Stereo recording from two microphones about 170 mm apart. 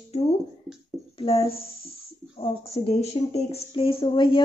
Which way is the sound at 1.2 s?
35° left (ahead or behind).